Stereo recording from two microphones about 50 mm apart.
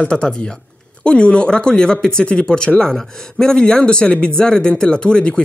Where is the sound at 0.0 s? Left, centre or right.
Centre.